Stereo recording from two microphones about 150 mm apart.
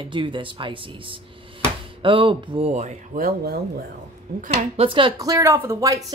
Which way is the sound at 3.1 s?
80° right.